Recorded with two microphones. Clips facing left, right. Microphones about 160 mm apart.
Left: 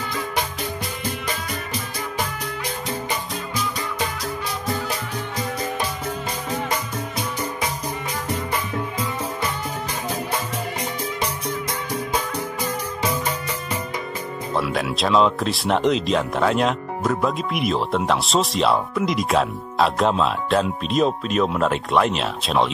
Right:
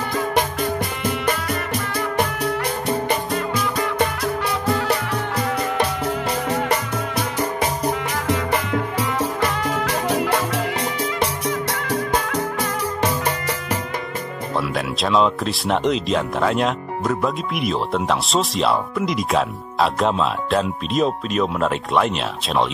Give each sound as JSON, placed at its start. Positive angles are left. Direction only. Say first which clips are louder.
{"t": 0.1, "sound": "music", "louder": "right 7 dB", "side_deg": -55}
{"t": 8.3, "sound": "music", "louder": "right 6 dB", "side_deg": -80}
{"t": 14.5, "sound": "speech", "louder": "left 1 dB", "side_deg": 0}